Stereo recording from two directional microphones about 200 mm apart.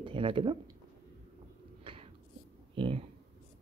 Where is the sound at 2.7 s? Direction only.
25° right (ahead or behind).